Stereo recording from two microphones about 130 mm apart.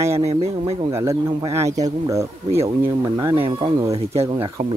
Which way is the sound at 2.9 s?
35° right (ahead or behind).